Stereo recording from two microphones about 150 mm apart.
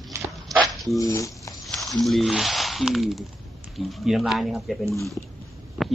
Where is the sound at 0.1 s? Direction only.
20° right (ahead or behind).